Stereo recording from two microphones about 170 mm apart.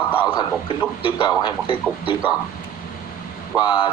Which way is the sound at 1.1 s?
25° left (ahead or behind).